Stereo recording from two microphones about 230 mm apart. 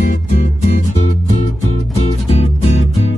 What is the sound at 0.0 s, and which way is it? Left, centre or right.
Music, left.